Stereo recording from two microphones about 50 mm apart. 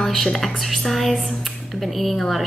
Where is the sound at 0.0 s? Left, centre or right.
Centre.